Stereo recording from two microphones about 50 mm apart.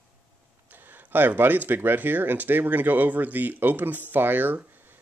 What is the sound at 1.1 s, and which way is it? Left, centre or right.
Speech, right.